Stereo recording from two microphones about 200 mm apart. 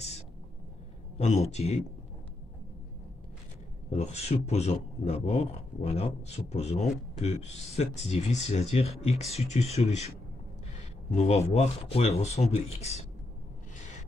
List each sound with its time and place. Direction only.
1.1 s speech: 35° left (ahead or behind)
3.9 s speech: 35° left (ahead or behind)
11.1 s speech: 30° left (ahead or behind)